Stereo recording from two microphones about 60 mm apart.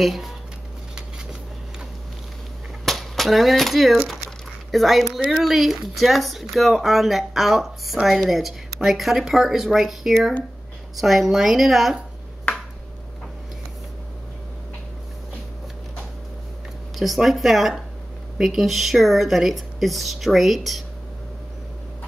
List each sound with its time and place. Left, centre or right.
0.0 s speech: centre
2.8 s speech: centre
16.9 s speech: centre